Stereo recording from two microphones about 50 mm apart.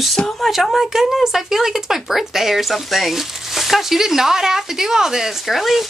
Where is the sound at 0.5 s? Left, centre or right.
Centre.